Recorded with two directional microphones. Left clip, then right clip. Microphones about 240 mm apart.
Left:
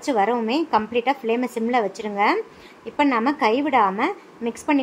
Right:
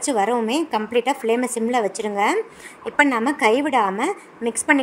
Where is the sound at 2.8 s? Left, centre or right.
Right.